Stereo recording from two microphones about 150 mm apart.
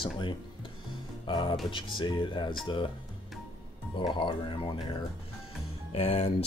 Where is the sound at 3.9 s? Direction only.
30° left (ahead or behind).